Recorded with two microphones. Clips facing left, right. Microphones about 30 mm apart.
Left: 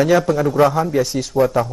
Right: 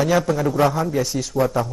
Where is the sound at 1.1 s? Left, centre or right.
Centre.